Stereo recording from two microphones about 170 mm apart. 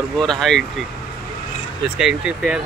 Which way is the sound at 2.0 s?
5° right (ahead or behind).